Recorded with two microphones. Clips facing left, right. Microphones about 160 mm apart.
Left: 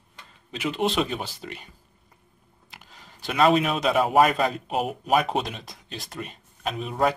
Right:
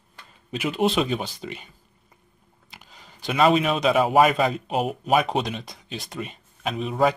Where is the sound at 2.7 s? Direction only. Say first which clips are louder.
Even; centre (ahead or behind).